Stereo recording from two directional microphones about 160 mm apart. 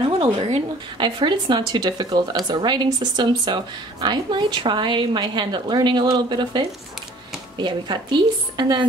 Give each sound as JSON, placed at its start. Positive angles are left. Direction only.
{"t": 0.2, "sound": "a woman's voice", "side_deg": -35}